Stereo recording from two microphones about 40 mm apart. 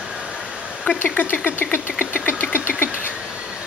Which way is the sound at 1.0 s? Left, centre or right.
Left.